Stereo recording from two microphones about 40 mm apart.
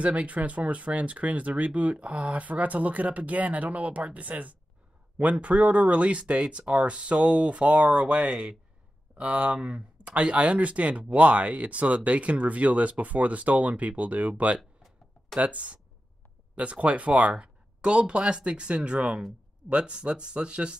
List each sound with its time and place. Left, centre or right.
0.0 s speech: right
9.6 s speech: right
14.6 s a sound: centre
15.3 s speech: right